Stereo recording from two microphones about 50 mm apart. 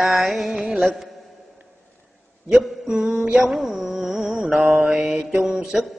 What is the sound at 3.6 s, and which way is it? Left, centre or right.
Music, right.